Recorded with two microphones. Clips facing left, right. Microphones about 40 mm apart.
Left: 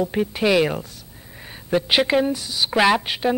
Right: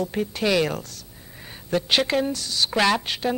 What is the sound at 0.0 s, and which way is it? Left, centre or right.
Speech, centre.